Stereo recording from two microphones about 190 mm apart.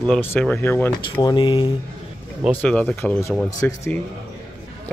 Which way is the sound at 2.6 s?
5° left (ahead or behind).